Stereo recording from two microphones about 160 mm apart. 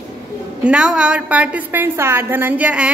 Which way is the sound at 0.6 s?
5° right (ahead or behind).